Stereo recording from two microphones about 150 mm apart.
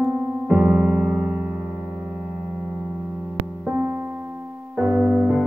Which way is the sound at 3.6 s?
5° right (ahead or behind).